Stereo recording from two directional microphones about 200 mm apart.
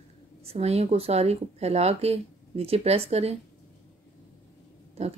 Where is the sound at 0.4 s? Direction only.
30° right (ahead or behind).